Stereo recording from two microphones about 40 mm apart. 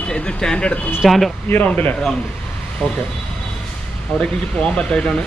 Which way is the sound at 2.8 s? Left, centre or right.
Left.